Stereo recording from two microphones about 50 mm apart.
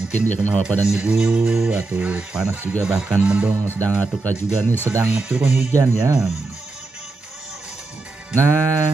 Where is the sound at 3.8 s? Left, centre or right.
Left.